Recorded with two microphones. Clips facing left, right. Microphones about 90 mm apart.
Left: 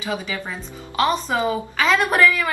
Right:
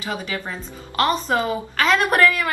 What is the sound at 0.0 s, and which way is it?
A woman's voice, 5° left (ahead or behind).